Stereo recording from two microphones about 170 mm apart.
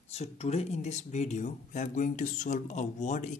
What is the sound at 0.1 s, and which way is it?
Speech, 40° left (ahead or behind).